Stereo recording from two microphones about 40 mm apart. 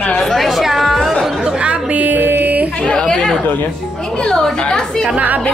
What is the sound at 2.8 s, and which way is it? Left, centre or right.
Chatter, left.